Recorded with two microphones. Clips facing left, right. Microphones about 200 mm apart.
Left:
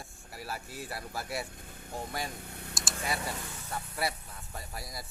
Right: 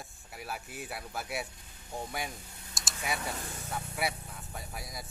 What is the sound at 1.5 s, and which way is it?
Vehicle, 55° left (ahead or behind).